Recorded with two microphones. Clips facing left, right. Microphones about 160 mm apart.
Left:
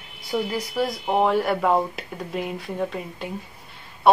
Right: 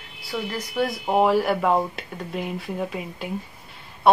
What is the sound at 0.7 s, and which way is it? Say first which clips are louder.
Speech: right 2 dB; 5° right (ahead or behind).